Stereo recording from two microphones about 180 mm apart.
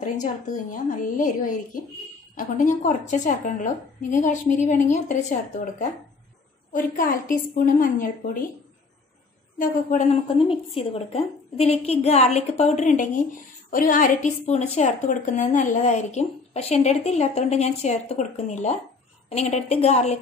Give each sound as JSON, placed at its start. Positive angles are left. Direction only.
{"t": 0.0, "sound": "a woman's voice", "side_deg": 45}
{"t": 9.6, "sound": "a woman's voice", "side_deg": 45}
{"t": 10.2, "sound": "a woman's voice", "side_deg": 30}